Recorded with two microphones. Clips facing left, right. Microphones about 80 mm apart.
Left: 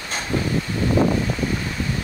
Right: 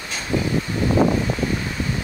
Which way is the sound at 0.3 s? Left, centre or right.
Centre.